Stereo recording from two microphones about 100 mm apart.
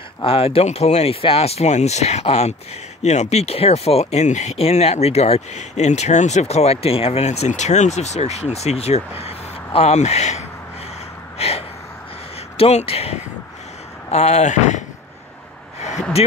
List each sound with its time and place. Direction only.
0.2 s speech: 70° left (ahead or behind); by 10.4 s 90° left
11.3 s gasp: 90° left
12.5 s speech: 85° left
15.8 s a sound: 90° left